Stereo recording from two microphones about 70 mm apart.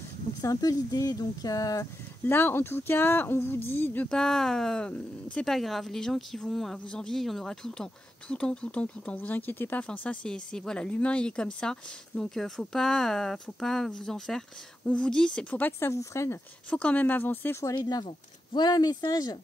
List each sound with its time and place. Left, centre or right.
0.4 s speech: left
2.2 s speech: left
4.1 s speech: centre; by 9.8 s left
9.8 s speech: centre
15.8 s speech: left
16.7 s speech: left
18.5 s speech: left